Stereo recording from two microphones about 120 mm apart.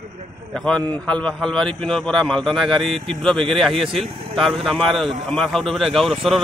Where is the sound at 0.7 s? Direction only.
10° left (ahead or behind).